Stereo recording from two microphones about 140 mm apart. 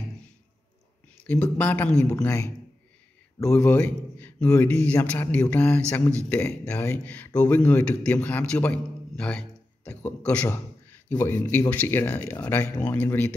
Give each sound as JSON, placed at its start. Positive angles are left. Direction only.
{"t": 1.2, "sound": "a man's voice", "side_deg": 10}
{"t": 2.0, "sound": "speech", "side_deg": 20}
{"t": 3.4, "sound": "a man's voice", "side_deg": 10}